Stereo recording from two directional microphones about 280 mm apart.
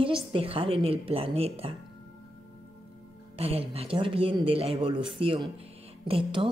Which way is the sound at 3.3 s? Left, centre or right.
Right.